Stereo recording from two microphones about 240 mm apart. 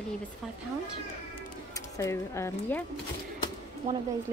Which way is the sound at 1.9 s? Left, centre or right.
Centre.